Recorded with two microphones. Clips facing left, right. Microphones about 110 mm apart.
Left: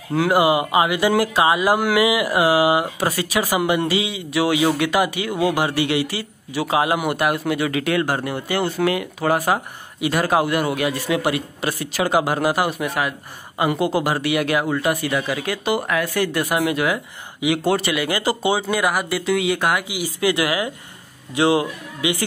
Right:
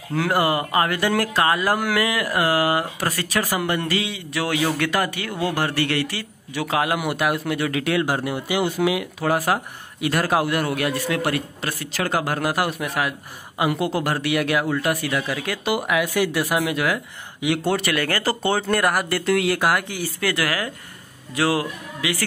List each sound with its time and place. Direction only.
0.1 s speech: 10° left (ahead or behind)
17.9 s speech: 15° left (ahead or behind); by 19.9 s centre (ahead or behind)
19.9 s a man's voice: 15° left (ahead or behind)